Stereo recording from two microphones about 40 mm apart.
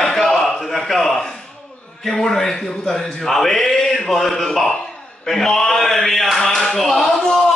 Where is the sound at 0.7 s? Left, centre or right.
Centre.